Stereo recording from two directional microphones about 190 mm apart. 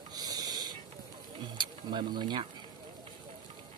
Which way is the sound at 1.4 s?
25° right (ahead or behind).